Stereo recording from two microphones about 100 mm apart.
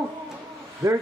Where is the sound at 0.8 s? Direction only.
30° right (ahead or behind).